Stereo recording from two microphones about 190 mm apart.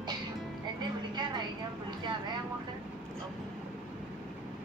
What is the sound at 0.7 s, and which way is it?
Music, 25° right (ahead or behind).